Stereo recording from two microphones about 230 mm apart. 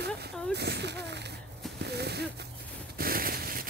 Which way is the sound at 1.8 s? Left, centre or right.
Right.